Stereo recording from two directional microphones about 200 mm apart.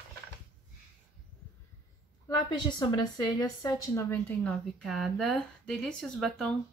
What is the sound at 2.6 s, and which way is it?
Speech, 20° left (ahead or behind).